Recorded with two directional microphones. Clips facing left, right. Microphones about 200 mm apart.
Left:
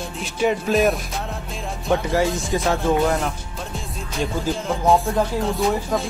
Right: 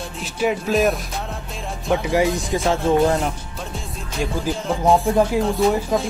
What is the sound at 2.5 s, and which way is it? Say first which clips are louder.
Music: right 1 dB; 25° right (ahead or behind).